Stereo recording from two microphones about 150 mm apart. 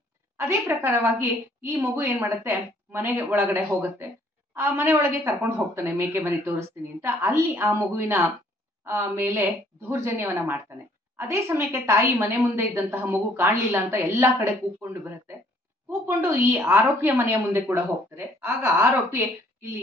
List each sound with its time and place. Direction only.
0.4 s a woman's voice: 15° right (ahead or behind)